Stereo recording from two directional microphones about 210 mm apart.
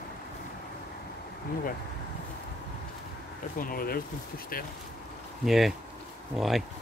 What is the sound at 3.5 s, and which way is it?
Speech, 45° left (ahead or behind).